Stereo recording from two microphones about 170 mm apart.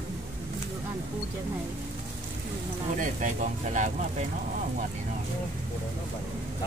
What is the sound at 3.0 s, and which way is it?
Speech, 45° right (ahead or behind).